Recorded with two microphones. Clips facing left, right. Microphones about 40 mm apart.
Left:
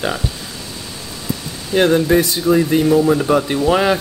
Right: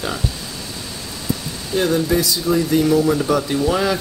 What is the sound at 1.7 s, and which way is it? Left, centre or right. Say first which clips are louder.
Speech: left 5 dB; left.